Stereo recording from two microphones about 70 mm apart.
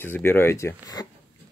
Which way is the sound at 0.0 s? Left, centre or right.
Left.